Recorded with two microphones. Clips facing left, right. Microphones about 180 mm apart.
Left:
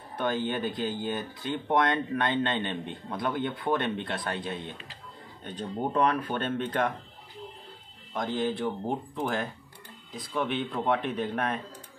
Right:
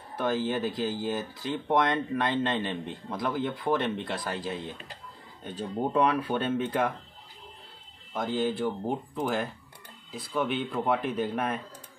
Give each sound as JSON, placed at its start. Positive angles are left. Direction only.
{"t": 0.2, "sound": "speech", "side_deg": 0}
{"t": 8.1, "sound": "speech", "side_deg": -5}